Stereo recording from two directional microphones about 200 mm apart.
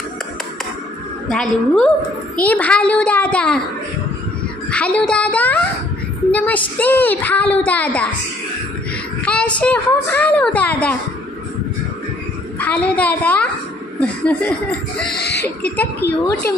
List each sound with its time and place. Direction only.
1.3 s a woman's voice: 5° left (ahead or behind)
4.6 s a woman's voice: 5° left (ahead or behind)
9.2 s a woman's voice: 5° left (ahead or behind)
12.5 s a woman's voice: 5° left (ahead or behind)
15.1 s a sound: 55° left (ahead or behind)
15.4 s a woman's voice: 10° left (ahead or behind)